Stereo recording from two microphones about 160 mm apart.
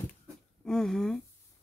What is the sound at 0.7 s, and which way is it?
Speech, 5° left (ahead or behind).